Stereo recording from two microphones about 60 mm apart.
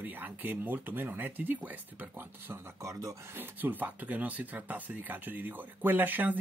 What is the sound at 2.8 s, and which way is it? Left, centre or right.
Speech, right.